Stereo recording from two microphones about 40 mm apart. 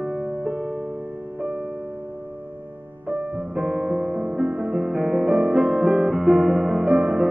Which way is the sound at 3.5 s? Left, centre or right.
Centre.